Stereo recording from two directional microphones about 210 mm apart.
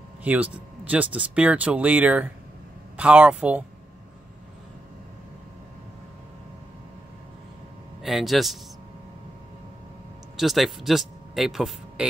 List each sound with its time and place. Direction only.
0.2 s speech: 5° right (ahead or behind)
8.0 s speech: centre (ahead or behind)
10.3 s speech: centre (ahead or behind)